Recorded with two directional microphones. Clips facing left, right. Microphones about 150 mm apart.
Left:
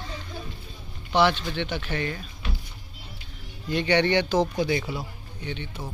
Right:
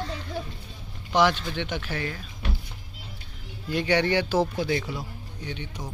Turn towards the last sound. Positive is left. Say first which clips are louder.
# left 1 dB
turn(degrees=-10)  # may be behind; listen again after turning